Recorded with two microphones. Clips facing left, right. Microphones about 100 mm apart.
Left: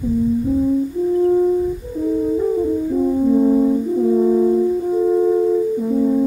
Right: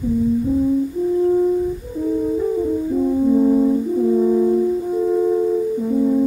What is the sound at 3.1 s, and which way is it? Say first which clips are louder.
French horn: even; 5° left (ahead or behind).